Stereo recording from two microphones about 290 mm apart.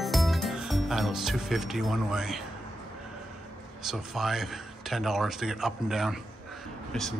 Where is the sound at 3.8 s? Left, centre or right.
Centre.